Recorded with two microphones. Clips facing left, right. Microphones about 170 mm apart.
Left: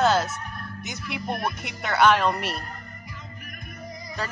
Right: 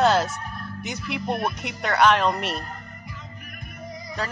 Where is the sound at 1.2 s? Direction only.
25° right (ahead or behind).